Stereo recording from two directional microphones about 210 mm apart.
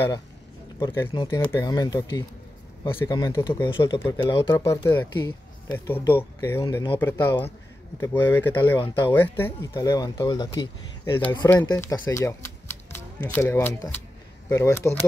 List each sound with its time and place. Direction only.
1.1 s speech: 20° left (ahead or behind)
3.7 s speech: 25° left (ahead or behind)
11.1 s speech: 10° left (ahead or behind)